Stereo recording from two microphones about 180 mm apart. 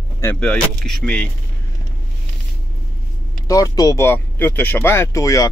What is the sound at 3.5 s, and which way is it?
Speech, 20° left (ahead or behind).